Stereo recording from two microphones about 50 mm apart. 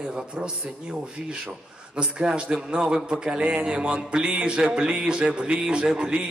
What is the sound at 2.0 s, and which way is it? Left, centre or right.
A man's voice, centre.